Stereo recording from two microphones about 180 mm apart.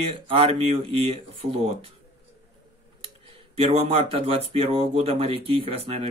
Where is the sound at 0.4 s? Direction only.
30° right (ahead or behind).